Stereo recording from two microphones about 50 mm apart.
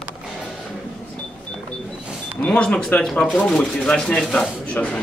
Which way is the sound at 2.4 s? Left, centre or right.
Left.